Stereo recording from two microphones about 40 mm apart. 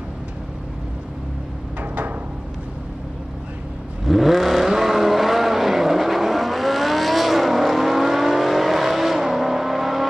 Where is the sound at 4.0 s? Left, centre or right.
Centre.